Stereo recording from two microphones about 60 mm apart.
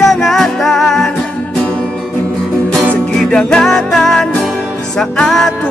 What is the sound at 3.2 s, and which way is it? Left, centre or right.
Music, centre.